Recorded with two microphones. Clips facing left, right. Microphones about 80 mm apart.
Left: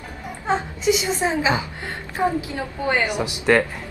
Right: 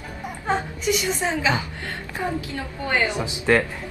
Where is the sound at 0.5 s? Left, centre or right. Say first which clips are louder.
Left 3 dB; left.